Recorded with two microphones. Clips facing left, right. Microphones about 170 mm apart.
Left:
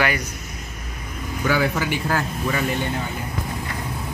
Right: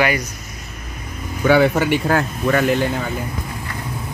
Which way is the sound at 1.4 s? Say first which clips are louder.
Right 7 dB; 60° right (ahead or behind).